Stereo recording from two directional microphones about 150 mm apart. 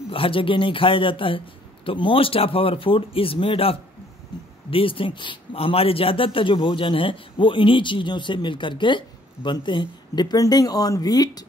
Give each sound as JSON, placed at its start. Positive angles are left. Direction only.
{"t": 0.1, "sound": "speech", "side_deg": 35}